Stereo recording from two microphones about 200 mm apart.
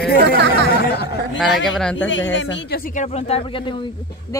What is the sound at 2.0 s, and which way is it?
Speech, 70° left (ahead or behind).